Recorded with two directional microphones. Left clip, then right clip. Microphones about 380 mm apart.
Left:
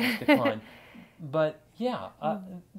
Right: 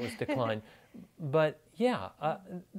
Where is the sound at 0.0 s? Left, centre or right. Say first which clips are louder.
Left 11 dB; left.